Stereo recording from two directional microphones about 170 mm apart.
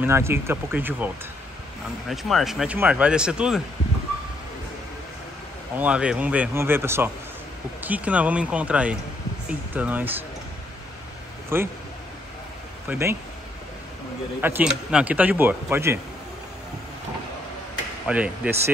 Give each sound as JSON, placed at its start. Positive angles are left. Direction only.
{"t": 0.0, "sound": "speech", "side_deg": -15}
{"t": 5.8, "sound": "speech", "side_deg": -5}
{"t": 11.5, "sound": "speech", "side_deg": -15}
{"t": 12.8, "sound": "speech", "side_deg": -10}
{"t": 14.4, "sound": "speech", "side_deg": -10}
{"t": 18.0, "sound": "speech", "side_deg": -5}